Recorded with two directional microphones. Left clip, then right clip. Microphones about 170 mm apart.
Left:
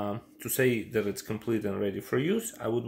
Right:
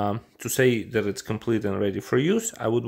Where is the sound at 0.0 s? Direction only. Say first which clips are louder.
Right 7 dB; 50° right (ahead or behind).